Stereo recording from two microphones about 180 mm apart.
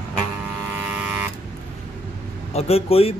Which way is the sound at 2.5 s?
35° left (ahead or behind).